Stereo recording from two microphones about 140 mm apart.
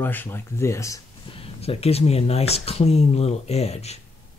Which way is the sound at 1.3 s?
40° left (ahead or behind).